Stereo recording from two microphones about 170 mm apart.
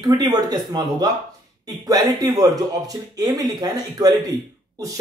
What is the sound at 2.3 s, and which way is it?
Speech, 20° right (ahead or behind).